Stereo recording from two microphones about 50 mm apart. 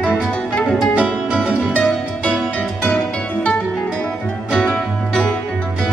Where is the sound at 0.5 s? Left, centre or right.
Centre.